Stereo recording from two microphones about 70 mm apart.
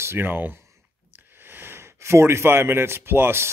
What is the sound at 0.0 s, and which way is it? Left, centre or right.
Speech, right.